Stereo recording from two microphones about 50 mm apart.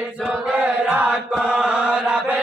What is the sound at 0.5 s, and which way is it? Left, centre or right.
Chant, right.